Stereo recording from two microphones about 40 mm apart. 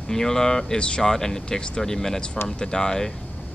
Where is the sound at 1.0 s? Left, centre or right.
Centre.